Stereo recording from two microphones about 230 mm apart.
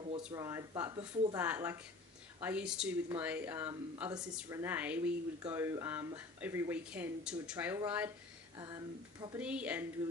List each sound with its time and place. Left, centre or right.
0.3 s speech: centre
1.4 s speech: centre
4.2 s speech: centre
9.4 s a woman's voice: centre